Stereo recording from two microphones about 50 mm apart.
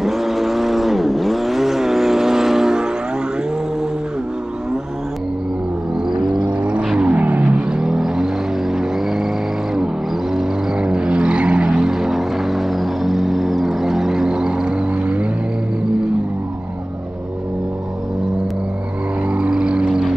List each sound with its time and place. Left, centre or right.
0.0 s vehicle: centre
7.0 s vehicle: right
7.7 s vehicle: centre
10.3 s vehicle: centre
19.3 s vehicle: right